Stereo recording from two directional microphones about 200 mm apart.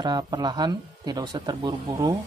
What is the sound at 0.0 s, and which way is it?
Speech, 20° right (ahead or behind).